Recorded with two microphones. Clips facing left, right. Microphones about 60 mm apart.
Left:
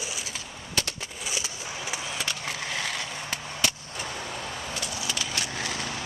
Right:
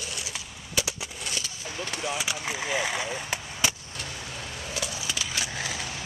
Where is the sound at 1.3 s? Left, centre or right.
Centre.